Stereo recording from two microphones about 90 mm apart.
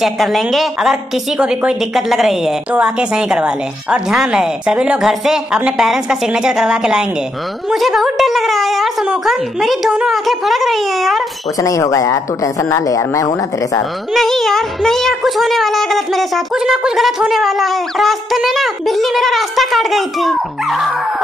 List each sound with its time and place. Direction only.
0.0 s a woman's voice: centre (ahead or behind)
11.6 s a woman's voice: 35° left (ahead or behind)
14.1 s speech: 5° left (ahead or behind)